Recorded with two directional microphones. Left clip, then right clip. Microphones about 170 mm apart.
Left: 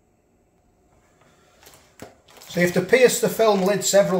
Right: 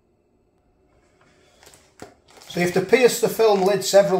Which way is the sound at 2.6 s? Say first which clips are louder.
Even; 20° right (ahead or behind).